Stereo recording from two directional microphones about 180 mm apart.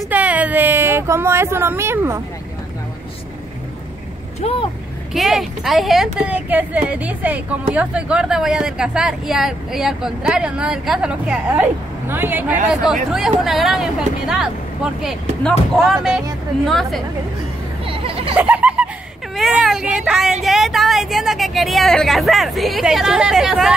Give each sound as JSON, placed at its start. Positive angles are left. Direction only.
{"t": 0.1, "sound": "speech", "side_deg": -10}
{"t": 4.4, "sound": "speech", "side_deg": 35}
{"t": 5.1, "sound": "a woman's voice", "side_deg": 0}
{"t": 15.0, "sound": "a woman's voice", "side_deg": 0}
{"t": 17.8, "sound": "a sound", "side_deg": -30}
{"t": 18.3, "sound": "a sound", "side_deg": -5}
{"t": 19.3, "sound": "a woman's voice", "side_deg": 0}